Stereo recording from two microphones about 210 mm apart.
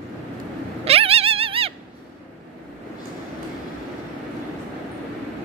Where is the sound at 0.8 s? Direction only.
30° right (ahead or behind).